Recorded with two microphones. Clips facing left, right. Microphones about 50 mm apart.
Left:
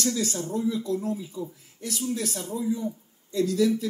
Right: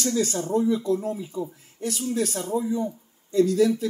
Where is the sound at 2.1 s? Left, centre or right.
Right.